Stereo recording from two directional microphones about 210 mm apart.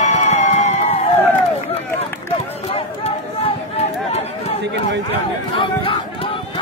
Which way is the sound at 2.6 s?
30° left (ahead or behind).